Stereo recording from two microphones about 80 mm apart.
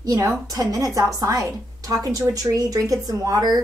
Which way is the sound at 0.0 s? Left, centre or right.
Right.